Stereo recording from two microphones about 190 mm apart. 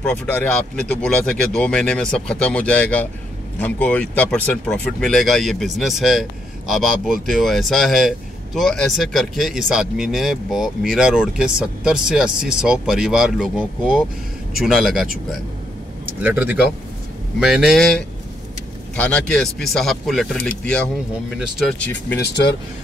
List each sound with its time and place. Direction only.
0.0 s speech: 10° left (ahead or behind)
16.2 s speech: 10° right (ahead or behind)
22.2 s speech: 60° left (ahead or behind)